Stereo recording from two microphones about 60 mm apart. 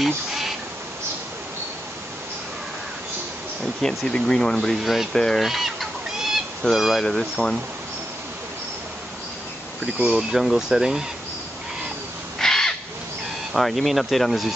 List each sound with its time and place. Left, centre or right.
0.0 s a sound: centre
3.8 s speech: centre
5.4 s fowl: centre
6.7 s speech: centre
9.9 s speech: centre
10.3 s speech: centre
12.4 s crow: centre
13.5 s speech: centre